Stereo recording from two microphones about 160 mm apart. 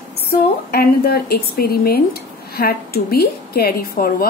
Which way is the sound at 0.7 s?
75° left (ahead or behind).